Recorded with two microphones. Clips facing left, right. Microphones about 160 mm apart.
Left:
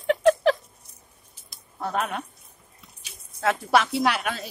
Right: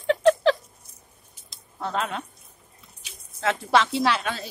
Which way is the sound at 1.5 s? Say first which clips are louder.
Left 1 dB; 25° right (ahead or behind).